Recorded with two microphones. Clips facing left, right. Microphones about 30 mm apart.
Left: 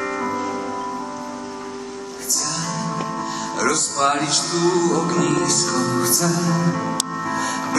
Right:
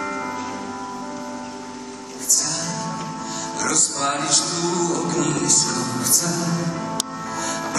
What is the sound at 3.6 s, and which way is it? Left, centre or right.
Music, left.